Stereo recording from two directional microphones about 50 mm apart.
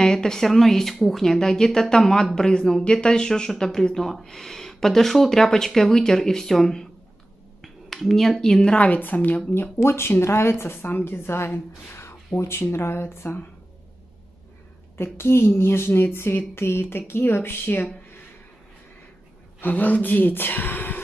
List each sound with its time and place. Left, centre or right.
0.0 s speech: centre
8.7 s speech: left
9.8 s speech: left
11.2 s speech: left
15.0 s speech: left
19.6 s speech: left